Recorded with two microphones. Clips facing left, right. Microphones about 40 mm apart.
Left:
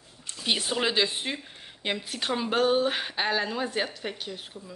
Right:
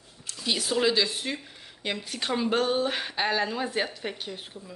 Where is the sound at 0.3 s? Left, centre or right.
Left.